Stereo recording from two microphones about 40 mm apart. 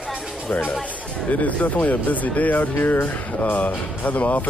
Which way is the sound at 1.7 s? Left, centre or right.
Left.